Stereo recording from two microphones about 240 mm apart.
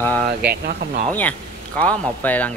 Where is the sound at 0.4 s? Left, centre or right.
Right.